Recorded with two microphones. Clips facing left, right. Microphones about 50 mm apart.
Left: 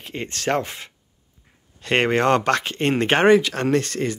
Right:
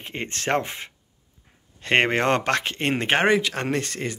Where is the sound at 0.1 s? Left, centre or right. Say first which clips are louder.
Left 1 dB; right.